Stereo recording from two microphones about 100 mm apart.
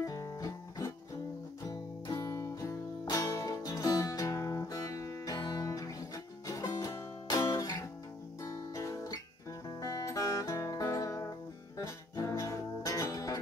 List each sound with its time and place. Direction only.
0.0 s music: 35° left (ahead or behind)
8.4 s guitar: 30° left (ahead or behind)
9.8 s music: 35° left (ahead or behind)